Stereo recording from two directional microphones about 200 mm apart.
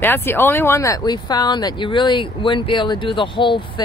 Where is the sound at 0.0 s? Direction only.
10° left (ahead or behind).